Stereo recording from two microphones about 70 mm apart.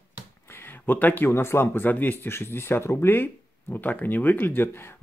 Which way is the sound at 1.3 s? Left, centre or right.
Left.